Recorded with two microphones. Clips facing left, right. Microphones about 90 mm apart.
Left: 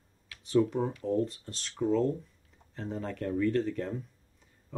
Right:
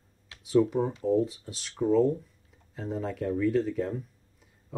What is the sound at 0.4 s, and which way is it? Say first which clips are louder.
Speech: right 3 dB; 5° right (ahead or behind).